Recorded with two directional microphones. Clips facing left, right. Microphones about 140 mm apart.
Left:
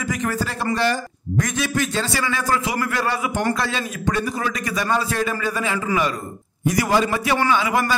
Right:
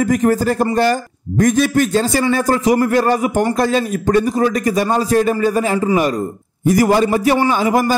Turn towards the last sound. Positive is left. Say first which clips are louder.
# right 5 dB
turn(degrees=-40)  # may be behind; listen again after turning